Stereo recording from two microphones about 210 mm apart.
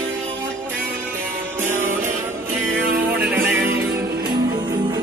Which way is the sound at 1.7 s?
10° right (ahead or behind).